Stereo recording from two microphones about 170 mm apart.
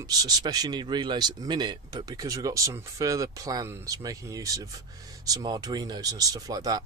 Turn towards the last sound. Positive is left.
turn(degrees=-20)  # may be behind; listen again after turning